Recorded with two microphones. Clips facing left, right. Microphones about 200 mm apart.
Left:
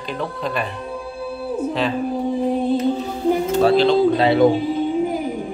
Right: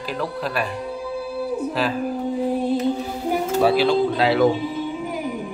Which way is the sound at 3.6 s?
10° right (ahead or behind).